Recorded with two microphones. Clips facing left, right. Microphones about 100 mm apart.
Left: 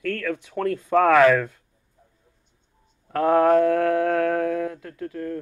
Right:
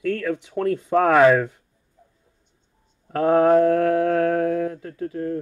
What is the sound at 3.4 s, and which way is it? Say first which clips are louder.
Speech: right 2 dB; 30° right (ahead or behind).